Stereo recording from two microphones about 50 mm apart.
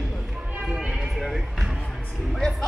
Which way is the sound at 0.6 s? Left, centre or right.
Right.